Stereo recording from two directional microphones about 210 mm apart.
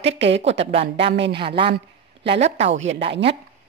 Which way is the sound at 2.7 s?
65° right (ahead or behind).